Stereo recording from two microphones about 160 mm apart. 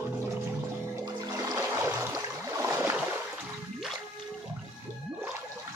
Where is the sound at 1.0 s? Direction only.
20° right (ahead or behind).